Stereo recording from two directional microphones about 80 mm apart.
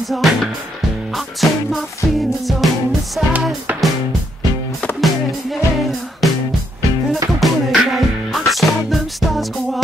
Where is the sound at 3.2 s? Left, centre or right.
Centre.